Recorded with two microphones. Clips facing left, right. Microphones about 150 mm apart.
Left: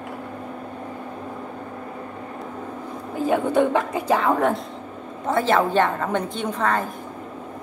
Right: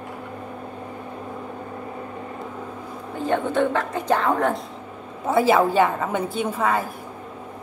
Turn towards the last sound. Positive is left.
turn(degrees=-10)  # may be behind; listen again after turning